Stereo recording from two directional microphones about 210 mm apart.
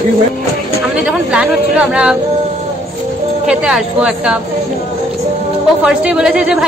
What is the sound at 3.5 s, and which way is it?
Speech, 5° right (ahead or behind).